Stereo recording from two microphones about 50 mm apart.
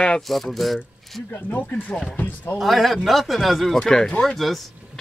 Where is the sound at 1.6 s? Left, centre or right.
Left.